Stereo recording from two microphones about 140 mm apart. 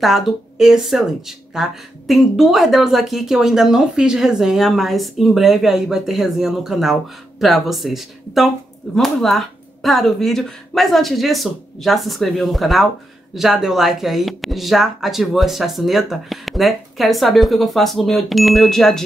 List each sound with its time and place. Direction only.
0.0 s speech: centre (ahead or behind)